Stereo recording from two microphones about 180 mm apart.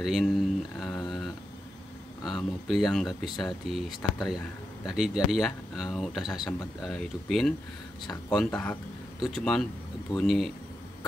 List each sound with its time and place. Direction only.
0.0 s mantra: centre (ahead or behind)
2.2 s speech: centre (ahead or behind)
9.2 s speech: 5° left (ahead or behind)